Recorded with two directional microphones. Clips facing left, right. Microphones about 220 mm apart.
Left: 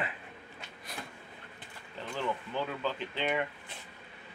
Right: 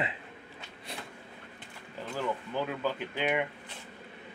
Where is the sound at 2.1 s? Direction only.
10° right (ahead or behind).